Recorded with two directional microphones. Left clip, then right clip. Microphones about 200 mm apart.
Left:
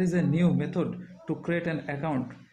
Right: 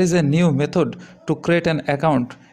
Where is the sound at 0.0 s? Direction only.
40° right (ahead or behind).